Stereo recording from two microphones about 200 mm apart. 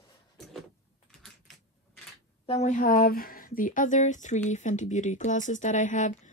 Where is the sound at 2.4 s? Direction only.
35° left (ahead or behind).